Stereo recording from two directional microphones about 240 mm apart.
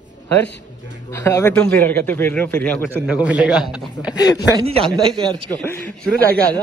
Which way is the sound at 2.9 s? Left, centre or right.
Centre.